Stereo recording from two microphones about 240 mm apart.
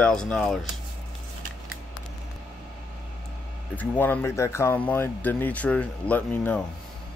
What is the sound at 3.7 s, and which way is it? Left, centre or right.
Speech, centre.